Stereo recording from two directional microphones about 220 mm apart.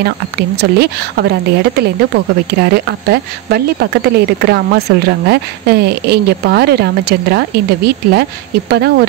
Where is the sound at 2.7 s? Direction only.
45° right (ahead or behind).